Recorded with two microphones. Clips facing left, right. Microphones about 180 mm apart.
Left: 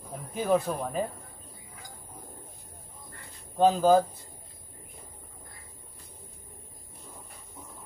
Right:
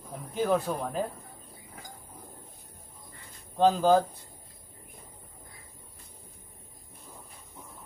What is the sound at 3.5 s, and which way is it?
Speech, 5° left (ahead or behind).